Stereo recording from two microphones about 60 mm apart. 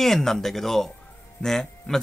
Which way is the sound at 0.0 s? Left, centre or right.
Centre.